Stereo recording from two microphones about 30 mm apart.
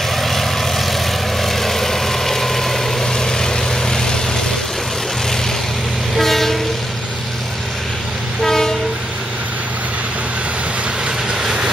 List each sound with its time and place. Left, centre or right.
0.1 s vehicle: centre
3.1 s vehicle: left
6.1 s train: centre
8.4 s train: centre